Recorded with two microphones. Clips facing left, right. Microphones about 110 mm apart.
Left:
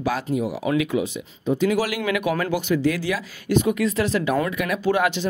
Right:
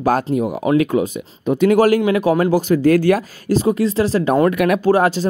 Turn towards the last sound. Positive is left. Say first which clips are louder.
# right 6 dB
turn(degrees=-35)  # may be behind; listen again after turning